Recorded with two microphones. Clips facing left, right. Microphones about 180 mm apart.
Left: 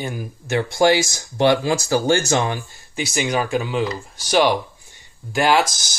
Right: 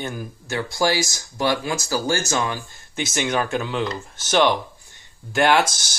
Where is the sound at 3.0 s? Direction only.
Centre (ahead or behind).